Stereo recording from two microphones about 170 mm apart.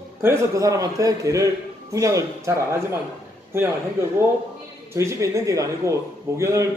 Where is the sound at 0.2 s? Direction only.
15° right (ahead or behind).